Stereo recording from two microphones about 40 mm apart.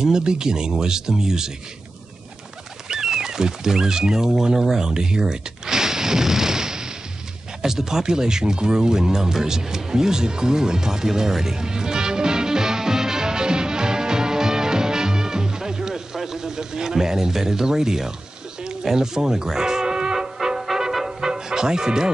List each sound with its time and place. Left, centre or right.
0.0 s speech: centre
2.9 s speech: centre
7.6 s music: centre